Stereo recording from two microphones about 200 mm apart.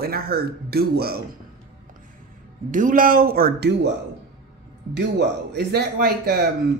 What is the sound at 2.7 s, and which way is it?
Speech, 40° right (ahead or behind).